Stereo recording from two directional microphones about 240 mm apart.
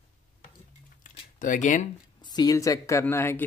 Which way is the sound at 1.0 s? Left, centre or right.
Left.